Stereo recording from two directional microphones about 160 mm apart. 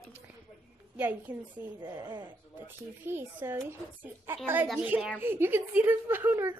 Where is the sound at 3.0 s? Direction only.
15° right (ahead or behind).